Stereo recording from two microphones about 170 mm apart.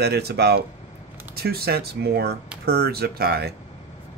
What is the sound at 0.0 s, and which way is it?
Speech, 70° right (ahead or behind).